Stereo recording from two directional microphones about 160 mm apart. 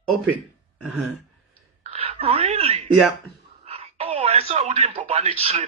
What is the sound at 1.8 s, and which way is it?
Speech, 40° right (ahead or behind).